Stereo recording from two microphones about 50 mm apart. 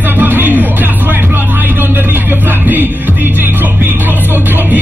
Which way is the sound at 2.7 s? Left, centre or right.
Right.